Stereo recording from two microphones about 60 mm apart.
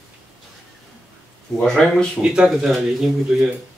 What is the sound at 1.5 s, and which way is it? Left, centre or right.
Speech, centre.